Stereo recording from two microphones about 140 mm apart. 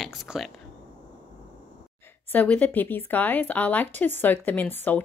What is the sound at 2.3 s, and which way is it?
A woman's voice, 10° left (ahead or behind).